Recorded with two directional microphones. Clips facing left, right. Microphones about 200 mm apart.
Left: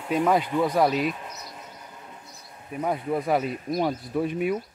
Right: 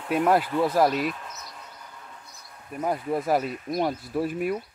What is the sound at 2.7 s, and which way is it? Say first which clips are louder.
Speech: even; centre (ahead or behind).